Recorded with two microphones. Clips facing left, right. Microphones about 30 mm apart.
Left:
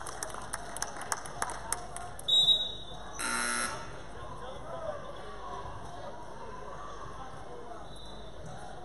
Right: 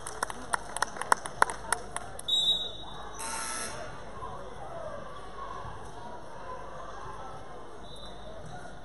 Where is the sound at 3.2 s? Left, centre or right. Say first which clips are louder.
Left 5 dB; left.